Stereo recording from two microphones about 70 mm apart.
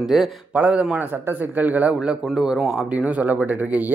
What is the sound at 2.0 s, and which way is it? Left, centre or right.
Speech, centre.